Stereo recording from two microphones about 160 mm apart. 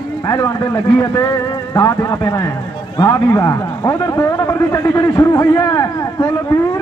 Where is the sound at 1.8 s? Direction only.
20° left (ahead or behind).